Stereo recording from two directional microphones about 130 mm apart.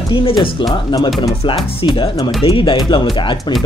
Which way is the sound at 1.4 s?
40° left (ahead or behind).